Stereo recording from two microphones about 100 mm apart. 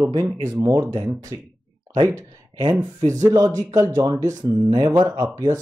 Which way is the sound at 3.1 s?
30° right (ahead or behind).